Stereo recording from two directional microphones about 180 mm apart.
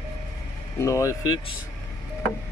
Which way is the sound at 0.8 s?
15° left (ahead or behind).